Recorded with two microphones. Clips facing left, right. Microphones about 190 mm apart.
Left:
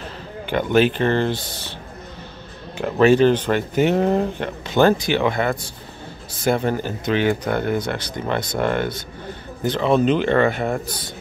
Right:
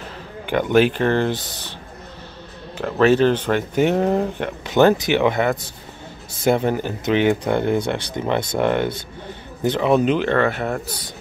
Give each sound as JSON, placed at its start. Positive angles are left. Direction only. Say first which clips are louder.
{"t": 0.5, "sound": "speech", "louder": "right 1 dB", "side_deg": -15}
{"t": 2.8, "sound": "speech", "louder": "left 1 dB", "side_deg": 10}
{"t": 4.1, "sound": "speech", "louder": "even", "side_deg": -5}
{"t": 4.6, "sound": "speech", "louder": "right 1 dB", "side_deg": -15}